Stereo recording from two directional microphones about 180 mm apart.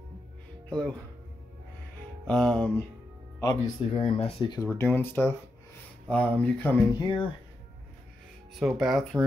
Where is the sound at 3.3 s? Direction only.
20° left (ahead or behind).